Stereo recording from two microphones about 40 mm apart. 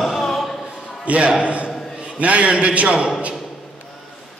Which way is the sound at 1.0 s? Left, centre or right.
Right.